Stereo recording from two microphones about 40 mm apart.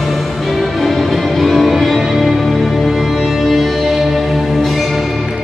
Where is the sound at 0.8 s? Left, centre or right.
Centre.